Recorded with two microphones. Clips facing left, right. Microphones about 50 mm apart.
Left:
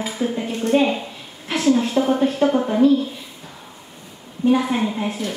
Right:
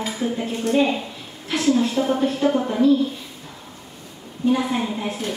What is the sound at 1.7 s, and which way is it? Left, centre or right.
Speech, left.